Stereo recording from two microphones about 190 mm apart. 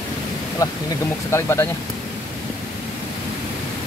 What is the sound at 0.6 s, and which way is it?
Speech, 20° left (ahead or behind).